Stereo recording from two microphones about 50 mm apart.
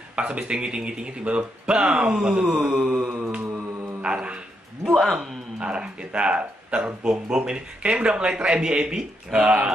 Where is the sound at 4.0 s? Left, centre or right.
Right.